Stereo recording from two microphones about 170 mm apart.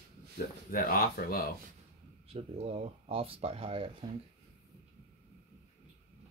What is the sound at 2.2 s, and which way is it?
Speech, 35° right (ahead or behind).